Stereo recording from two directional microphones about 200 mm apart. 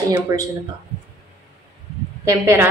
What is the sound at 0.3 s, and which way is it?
Mantra, 20° right (ahead or behind).